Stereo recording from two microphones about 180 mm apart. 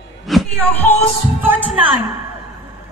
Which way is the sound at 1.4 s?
10° right (ahead or behind).